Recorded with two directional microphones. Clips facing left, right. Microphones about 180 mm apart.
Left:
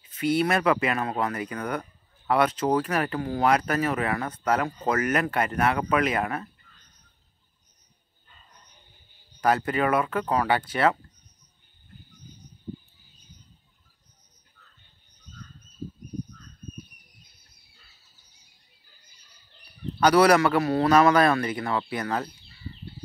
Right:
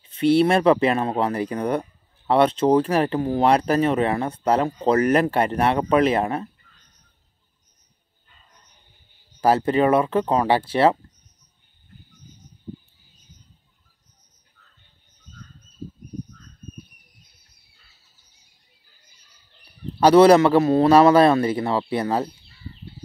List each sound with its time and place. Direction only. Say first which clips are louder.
0.0 s speech: right 7 dB; 30° right (ahead or behind)
9.4 s speech: right 6 dB; 30° right (ahead or behind)
20.0 s speech: right 6 dB; 25° right (ahead or behind)